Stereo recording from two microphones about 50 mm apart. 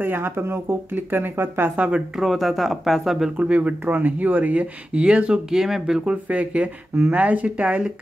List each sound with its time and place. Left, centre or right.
0.0 s speech: right
1.8 s speech: right
2.1 s speech: centre
3.3 s speech: right
5.5 s speech: centre
6.2 s speech: right